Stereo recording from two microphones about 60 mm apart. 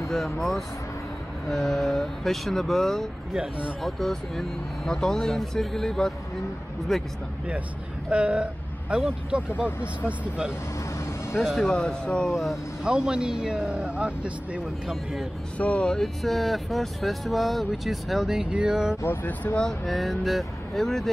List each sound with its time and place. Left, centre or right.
0.1 s speech: centre
8.1 s speech: centre
11.3 s speech: centre
12.8 s speech: centre
15.5 s speech: left
15.8 s speech: centre
19.0 s speech: left
19.6 s speech: centre